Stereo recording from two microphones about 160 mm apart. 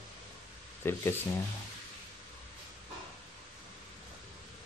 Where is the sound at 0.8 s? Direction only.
15° left (ahead or behind).